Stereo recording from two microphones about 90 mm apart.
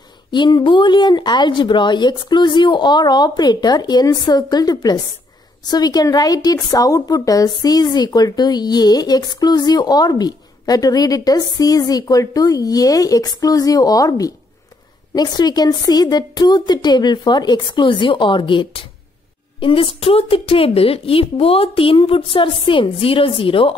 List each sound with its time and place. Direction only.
0.3 s a woman's voice: 55° left (ahead or behind)
19.6 s a woman's voice: 80° left